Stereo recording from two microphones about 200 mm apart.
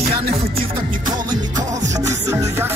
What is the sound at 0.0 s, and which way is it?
Music, 30° right (ahead or behind).